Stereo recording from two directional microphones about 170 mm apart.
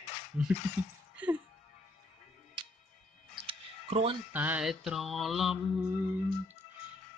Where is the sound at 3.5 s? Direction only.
30° right (ahead or behind).